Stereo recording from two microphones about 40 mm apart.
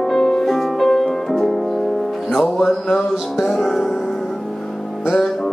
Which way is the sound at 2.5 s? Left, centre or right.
Centre.